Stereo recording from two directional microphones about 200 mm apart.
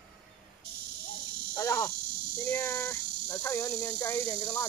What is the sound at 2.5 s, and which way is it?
Speech, 15° left (ahead or behind).